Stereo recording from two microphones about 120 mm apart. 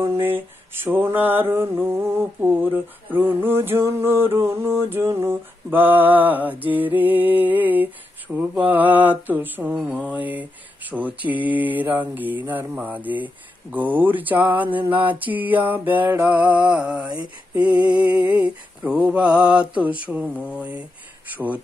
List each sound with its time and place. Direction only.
0.8 s mantra: 15° right (ahead or behind)